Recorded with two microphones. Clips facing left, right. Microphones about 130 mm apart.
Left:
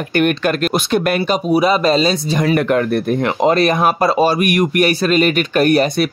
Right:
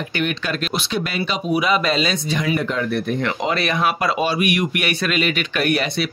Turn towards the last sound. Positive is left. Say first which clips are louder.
# left 7 dB
turn(degrees=40)  # may be behind; listen again after turning